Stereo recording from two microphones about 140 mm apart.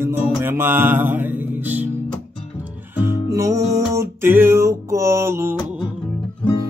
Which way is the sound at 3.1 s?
20° right (ahead or behind).